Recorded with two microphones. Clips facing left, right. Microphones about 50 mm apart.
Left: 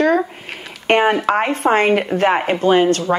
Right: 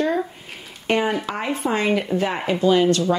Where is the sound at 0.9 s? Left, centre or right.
Left.